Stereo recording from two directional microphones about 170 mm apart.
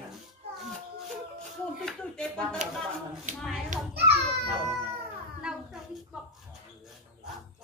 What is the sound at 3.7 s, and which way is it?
Children playing, 45° right (ahead or behind).